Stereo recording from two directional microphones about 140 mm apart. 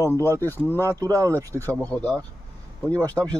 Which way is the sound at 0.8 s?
25° right (ahead or behind).